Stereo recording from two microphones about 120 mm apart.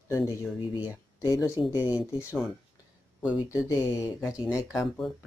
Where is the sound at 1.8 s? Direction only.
15° right (ahead or behind).